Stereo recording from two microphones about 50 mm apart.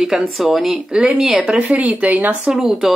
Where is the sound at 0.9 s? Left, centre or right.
Centre.